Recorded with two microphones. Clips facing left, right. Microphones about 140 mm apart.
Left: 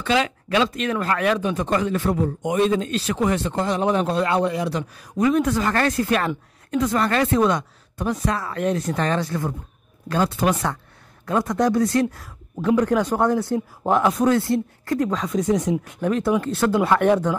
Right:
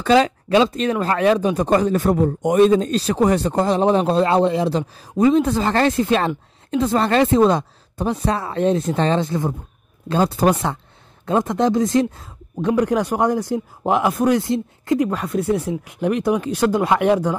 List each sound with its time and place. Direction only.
0.0 s a man's voice: 35° right (ahead or behind)
12.7 s speech: 10° right (ahead or behind)
15.0 s speech: 5° right (ahead or behind)